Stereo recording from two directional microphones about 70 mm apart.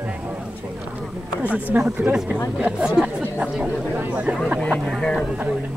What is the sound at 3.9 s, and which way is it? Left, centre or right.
Speech, right.